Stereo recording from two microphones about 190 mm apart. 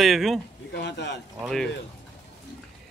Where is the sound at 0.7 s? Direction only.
60° left (ahead or behind).